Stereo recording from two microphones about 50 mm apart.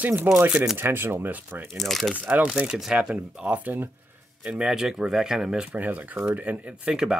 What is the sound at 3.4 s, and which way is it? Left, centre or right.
Speech, right.